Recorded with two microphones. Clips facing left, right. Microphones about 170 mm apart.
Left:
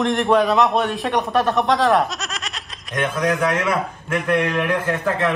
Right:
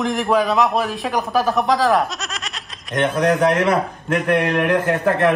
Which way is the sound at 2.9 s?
25° right (ahead or behind).